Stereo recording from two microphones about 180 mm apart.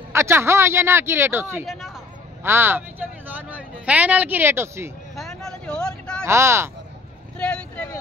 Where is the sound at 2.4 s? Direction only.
10° right (ahead or behind).